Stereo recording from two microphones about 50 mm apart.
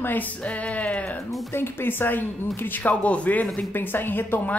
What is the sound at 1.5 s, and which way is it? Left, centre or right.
A woman's voice, left.